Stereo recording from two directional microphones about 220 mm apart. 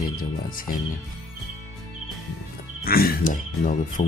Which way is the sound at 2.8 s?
45° left (ahead or behind).